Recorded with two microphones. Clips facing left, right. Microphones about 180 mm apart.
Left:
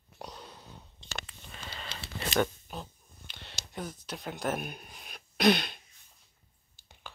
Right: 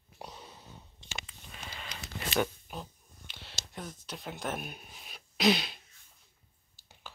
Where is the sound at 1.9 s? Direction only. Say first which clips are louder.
Left 2 dB; 30° left (ahead or behind).